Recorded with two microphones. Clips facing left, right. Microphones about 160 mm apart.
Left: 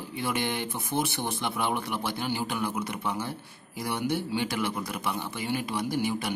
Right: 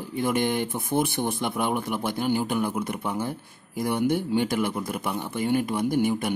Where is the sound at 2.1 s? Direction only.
50° right (ahead or behind).